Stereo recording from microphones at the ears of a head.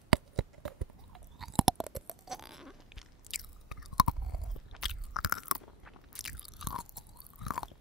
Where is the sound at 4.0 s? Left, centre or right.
Left.